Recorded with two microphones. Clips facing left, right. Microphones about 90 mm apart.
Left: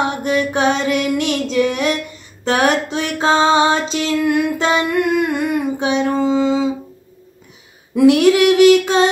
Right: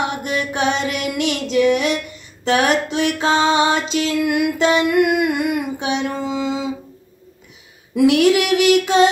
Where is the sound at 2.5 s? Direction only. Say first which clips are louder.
Left 1 dB; 40° left (ahead or behind).